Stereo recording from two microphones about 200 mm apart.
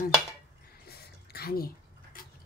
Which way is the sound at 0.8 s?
50° left (ahead or behind).